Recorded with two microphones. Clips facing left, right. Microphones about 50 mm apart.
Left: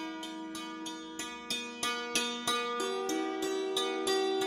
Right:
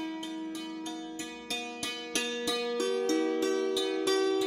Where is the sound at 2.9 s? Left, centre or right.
Right.